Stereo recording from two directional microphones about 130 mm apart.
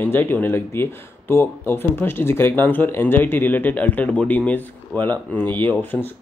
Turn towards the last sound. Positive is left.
turn(degrees=15)  # may be behind; listen again after turning